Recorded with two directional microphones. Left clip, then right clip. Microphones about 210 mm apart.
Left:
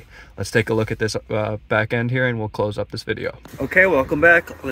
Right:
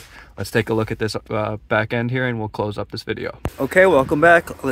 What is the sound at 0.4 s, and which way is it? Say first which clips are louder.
Speech: left 1 dB; 5° left (ahead or behind).